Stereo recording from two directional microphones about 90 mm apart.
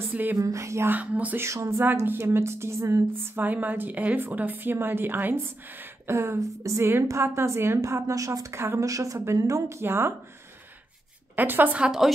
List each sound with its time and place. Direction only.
0.1 s speech: 20° right (ahead or behind)
0.4 s a woman's voice: 35° right (ahead or behind)
0.9 s speech: 15° right (ahead or behind)
1.4 s speech: 30° right (ahead or behind)
3.3 s a woman's voice: 20° right (ahead or behind)
11.3 s speech: 20° right (ahead or behind)